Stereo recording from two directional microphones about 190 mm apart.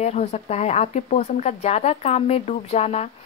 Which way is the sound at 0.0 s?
35° left (ahead or behind).